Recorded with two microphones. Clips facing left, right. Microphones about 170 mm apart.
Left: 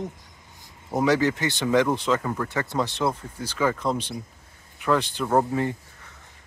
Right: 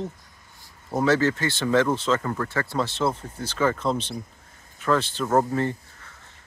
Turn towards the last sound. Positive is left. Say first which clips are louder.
# even
turn(degrees=15)  # may be behind; listen again after turning